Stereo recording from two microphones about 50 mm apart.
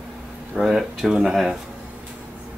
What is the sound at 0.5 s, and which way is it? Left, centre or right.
Speech, centre.